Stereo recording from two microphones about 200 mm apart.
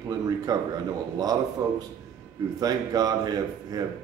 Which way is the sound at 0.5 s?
15° right (ahead or behind).